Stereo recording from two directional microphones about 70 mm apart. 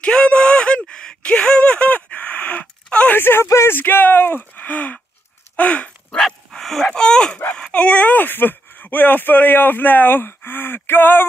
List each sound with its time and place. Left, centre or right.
0.0 s a sound: centre
3.2 s speech: left
3.7 s speech: left
6.1 s speech: centre; by 11.2 s left